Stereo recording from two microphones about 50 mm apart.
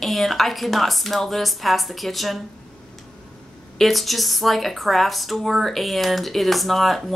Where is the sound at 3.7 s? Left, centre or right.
Centre.